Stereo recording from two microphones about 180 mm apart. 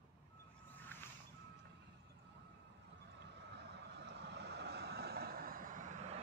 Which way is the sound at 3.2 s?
70° right (ahead or behind).